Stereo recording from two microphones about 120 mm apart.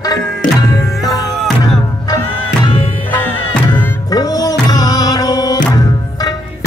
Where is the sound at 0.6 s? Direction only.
30° left (ahead or behind).